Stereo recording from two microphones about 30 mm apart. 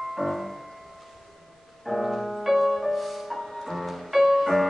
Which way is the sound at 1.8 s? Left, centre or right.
Centre.